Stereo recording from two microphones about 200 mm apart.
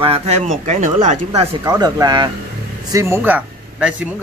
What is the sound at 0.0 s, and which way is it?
Speech, 30° right (ahead or behind).